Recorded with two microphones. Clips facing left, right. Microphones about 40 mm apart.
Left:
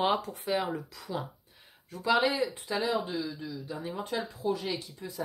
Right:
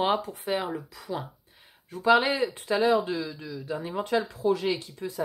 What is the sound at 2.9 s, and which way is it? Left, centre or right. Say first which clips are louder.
Speech: right 6 dB; right.